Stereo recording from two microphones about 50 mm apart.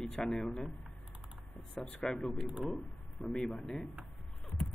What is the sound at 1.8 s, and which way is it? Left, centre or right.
Speech, centre.